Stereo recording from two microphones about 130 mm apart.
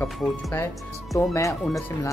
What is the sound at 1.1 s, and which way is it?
Speech, 25° left (ahead or behind).